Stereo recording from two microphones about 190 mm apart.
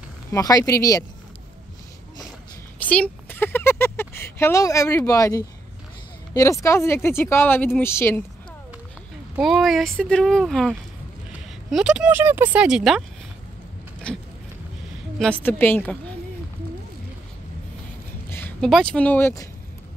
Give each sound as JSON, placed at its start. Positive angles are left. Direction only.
{"t": 0.3, "sound": "speech", "side_deg": 20}
{"t": 2.8, "sound": "speech", "side_deg": 10}
{"t": 9.3, "sound": "speech", "side_deg": 0}
{"t": 11.7, "sound": "speech", "side_deg": -5}
{"t": 14.1, "sound": "a sound", "side_deg": 5}
{"t": 15.1, "sound": "speech", "side_deg": 5}
{"t": 18.3, "sound": "a sound", "side_deg": 10}
{"t": 18.7, "sound": "speech", "side_deg": 5}